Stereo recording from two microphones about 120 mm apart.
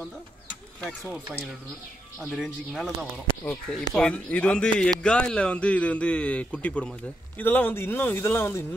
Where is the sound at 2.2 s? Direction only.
Centre (ahead or behind).